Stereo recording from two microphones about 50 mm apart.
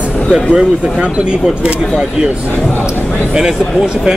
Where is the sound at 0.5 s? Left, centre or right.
Centre.